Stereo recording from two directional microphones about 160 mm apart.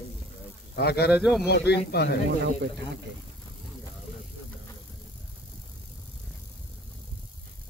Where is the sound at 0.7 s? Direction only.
90° left.